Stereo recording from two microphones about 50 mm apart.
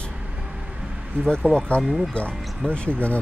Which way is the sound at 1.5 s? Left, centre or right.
Right.